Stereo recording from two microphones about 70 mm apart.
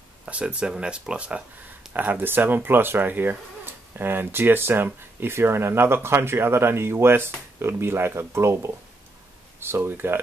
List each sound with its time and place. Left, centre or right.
0.2 s speech: centre